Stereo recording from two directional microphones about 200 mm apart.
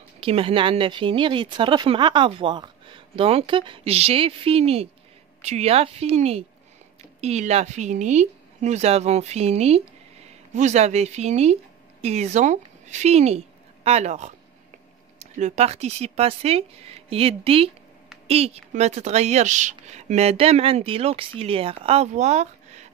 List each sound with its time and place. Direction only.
0.2 s a woman's voice: 25° right (ahead or behind)